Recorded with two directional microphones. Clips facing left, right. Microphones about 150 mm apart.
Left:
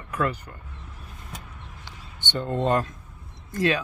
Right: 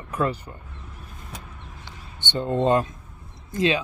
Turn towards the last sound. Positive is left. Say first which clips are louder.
# right 1 dB
turn(degrees=-20)  # may be behind; listen again after turning